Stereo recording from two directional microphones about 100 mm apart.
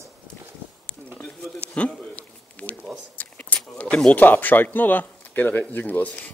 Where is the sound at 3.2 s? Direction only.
15° left (ahead or behind).